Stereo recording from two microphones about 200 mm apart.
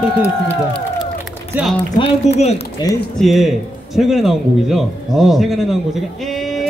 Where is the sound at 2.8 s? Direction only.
20° left (ahead or behind).